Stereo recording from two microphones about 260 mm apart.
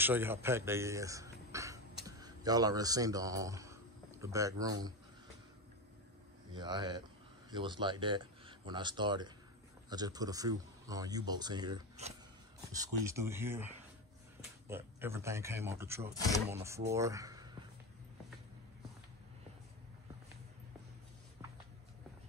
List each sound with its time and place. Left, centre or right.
0.0 s speech: centre
6.5 s speech: centre
14.7 s speech: centre